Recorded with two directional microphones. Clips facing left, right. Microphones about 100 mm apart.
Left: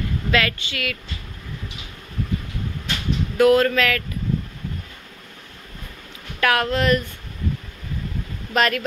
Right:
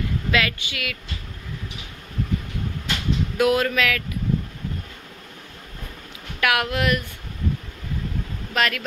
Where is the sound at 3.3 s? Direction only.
15° right (ahead or behind).